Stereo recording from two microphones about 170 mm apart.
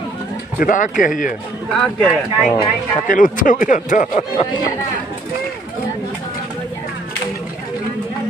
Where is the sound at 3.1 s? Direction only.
50° left (ahead or behind).